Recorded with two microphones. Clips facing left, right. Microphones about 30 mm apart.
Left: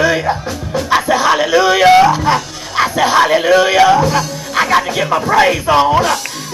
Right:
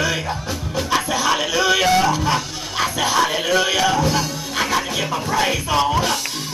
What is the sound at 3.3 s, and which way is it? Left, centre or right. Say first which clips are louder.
Speech: left 8 dB; centre.